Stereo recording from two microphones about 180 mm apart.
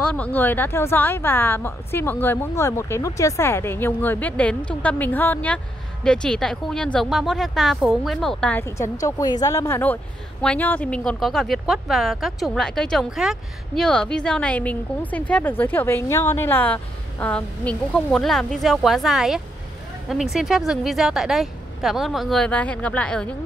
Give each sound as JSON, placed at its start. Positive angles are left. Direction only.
{"t": 0.1, "sound": "a woman's voice", "side_deg": 10}